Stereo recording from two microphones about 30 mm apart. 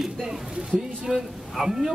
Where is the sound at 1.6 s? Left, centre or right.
Centre.